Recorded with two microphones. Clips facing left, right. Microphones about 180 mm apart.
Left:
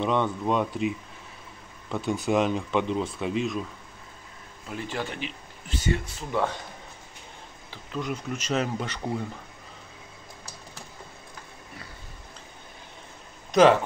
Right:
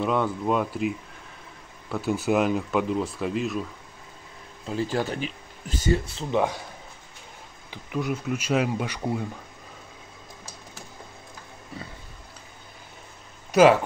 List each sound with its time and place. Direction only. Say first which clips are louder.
0.0 s speech: right 1 dB; 5° right (ahead or behind)
4.6 s speech: right 6 dB; 35° right (ahead or behind)
6.3 s a man's voice: right 3 dB; 20° right (ahead or behind)
7.7 s speech: right 3 dB; 10° right (ahead or behind)
13.5 s speech: right 1 dB; 5° right (ahead or behind)